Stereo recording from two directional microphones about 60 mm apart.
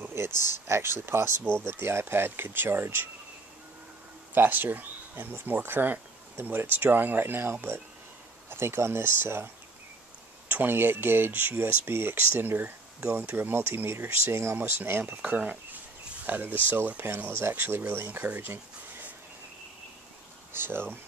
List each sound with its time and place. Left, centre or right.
0.0 s speech: right
4.3 s speech: right
10.5 s speech: right
14.6 s speech: right
15.0 s speech: right
20.5 s speech: right